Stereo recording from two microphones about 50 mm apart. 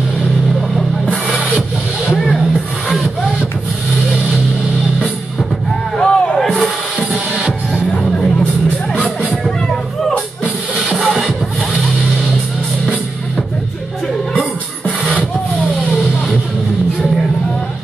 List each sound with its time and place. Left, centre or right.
1.0 s music: centre
5.9 s music: centre
7.3 s music: right
9.3 s music: centre
11.0 s music: centre